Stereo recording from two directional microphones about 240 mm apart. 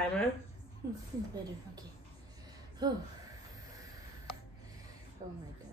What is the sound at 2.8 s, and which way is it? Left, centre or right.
Speech, centre.